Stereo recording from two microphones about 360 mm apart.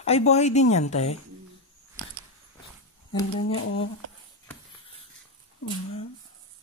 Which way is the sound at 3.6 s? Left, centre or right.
Left.